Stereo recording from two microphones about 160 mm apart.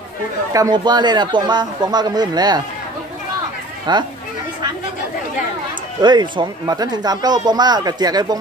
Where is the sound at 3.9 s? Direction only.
25° right (ahead or behind).